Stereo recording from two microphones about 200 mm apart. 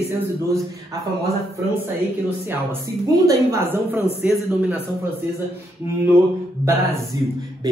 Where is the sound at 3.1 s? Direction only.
15° right (ahead or behind).